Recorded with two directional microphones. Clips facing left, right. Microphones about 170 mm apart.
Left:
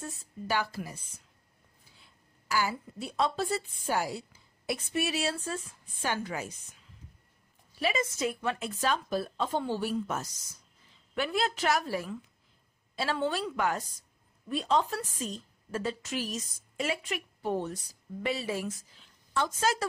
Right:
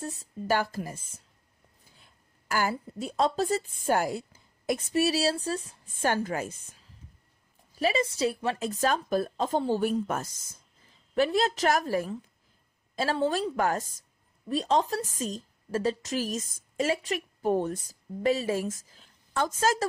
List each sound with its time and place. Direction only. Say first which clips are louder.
0.0 s a woman's voice: right 4 dB; 45° right (ahead or behind)
2.4 s a sound: right 2 dB; 50° right (ahead or behind)
2.7 s a woman's voice: right 4 dB; 40° right (ahead or behind)
7.7 s a woman's voice: right 4 dB; 35° right (ahead or behind); by 10.3 s 55° right (ahead or behind)
11.1 s a woman's voice: right 6 dB; 40° right (ahead or behind)